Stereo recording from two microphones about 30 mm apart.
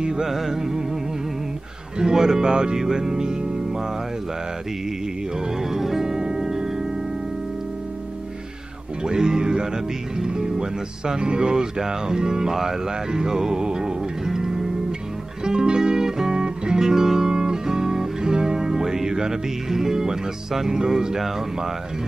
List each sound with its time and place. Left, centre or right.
0.2 s speech: centre
2.0 s speech: right
2.8 s music: right
5.6 s music: centre
9.0 s speech: right
12.5 s music: centre
19.7 s speech: centre